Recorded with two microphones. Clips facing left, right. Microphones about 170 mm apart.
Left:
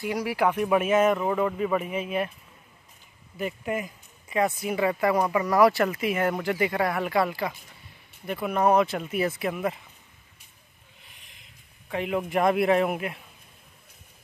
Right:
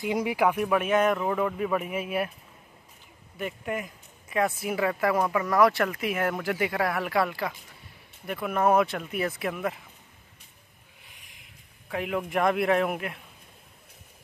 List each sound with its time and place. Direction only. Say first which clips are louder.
0.0 s speech: even; 20° right (ahead or behind)
0.7 s speech: left 2 dB; 5° left (ahead or behind)
3.3 s speech: left 2 dB; centre (ahead or behind)
11.9 s speech: left 2 dB; centre (ahead or behind)